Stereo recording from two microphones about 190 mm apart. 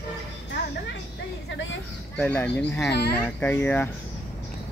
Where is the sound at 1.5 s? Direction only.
80° left.